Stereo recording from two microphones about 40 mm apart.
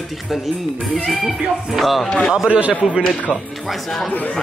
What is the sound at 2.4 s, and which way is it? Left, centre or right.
Speech, right.